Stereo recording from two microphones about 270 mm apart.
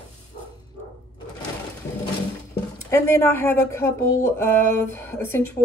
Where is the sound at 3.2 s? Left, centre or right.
Centre.